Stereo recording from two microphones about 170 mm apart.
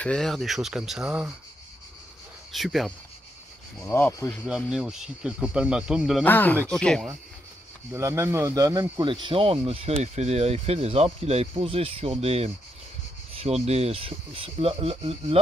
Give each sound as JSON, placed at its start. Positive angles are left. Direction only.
{"t": 0.0, "sound": "speech", "side_deg": 5}
{"t": 2.5, "sound": "speech", "side_deg": 0}
{"t": 3.8, "sound": "speech", "side_deg": 15}
{"t": 4.5, "sound": "speech", "side_deg": -5}
{"t": 6.2, "sound": "speech", "side_deg": 10}
{"t": 7.9, "sound": "speech", "side_deg": -15}